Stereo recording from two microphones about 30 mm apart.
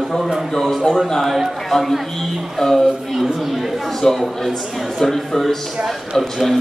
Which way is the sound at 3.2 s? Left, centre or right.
Centre.